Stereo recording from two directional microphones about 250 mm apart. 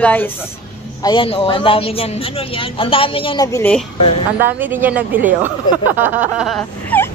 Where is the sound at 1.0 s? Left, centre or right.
Centre.